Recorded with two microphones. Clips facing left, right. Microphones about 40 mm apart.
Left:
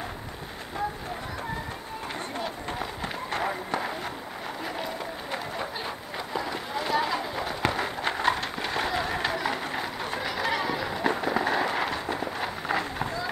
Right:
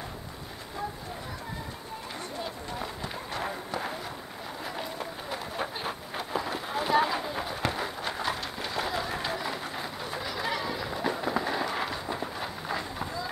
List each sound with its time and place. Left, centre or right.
3.3 s run: left
5.6 s a sound: centre
7.1 s a sound: centre
7.4 s run: left
8.1 s horse: left
8.5 s train: left